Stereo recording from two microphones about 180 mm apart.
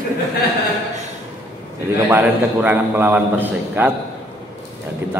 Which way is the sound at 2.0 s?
10° right (ahead or behind).